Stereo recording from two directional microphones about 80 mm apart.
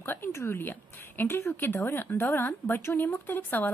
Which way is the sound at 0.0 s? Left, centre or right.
Left.